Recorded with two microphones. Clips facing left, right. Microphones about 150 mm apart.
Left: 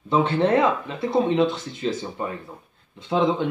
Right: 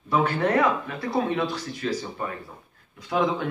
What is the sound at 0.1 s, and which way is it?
Speech, 25° left (ahead or behind).